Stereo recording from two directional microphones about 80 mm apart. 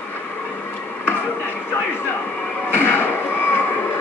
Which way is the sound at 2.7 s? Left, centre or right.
Left.